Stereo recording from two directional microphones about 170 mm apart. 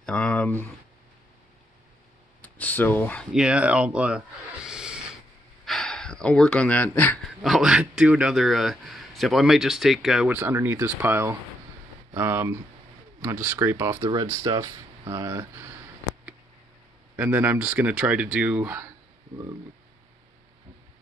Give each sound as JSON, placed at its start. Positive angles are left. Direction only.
{"t": 0.0, "sound": "speech", "side_deg": 5}
{"t": 2.4, "sound": "a sound", "side_deg": 10}
{"t": 3.3, "sound": "speech", "side_deg": -5}
{"t": 4.6, "sound": "a sound", "side_deg": -5}
{"t": 5.7, "sound": "speech", "side_deg": 5}
{"t": 7.4, "sound": "a man's voice", "side_deg": 0}
{"t": 17.1, "sound": "speech", "side_deg": -10}